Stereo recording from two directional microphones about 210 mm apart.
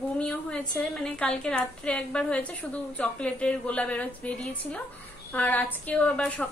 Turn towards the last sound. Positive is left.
turn(degrees=5)  # may be behind; listen again after turning